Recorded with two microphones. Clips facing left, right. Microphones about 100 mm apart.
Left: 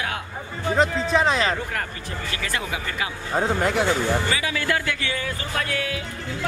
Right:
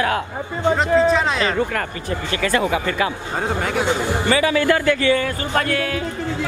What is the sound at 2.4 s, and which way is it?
Speech, 60° right (ahead or behind).